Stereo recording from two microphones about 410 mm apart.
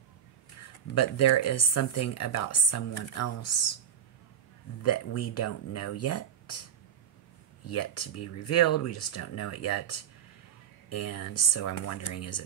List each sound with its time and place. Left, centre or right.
0.9 s speech: left
4.8 s speech: left
7.6 s speech: left
10.9 s speech: left